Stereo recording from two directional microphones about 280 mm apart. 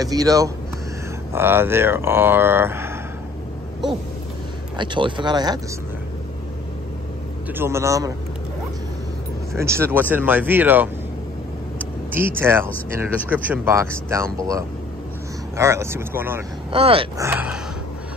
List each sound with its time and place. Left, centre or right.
0.0 s speech: centre
4.7 s speech: centre
7.5 s speech: centre
9.6 s speech: centre
12.1 s speech: centre
16.7 s speech: centre